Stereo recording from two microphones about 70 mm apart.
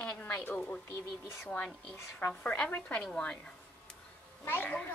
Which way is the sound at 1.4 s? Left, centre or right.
Centre.